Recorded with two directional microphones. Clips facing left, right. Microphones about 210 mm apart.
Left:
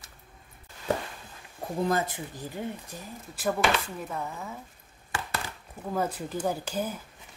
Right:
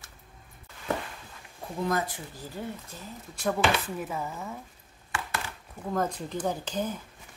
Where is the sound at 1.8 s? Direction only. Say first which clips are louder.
Even; 25° left (ahead or behind).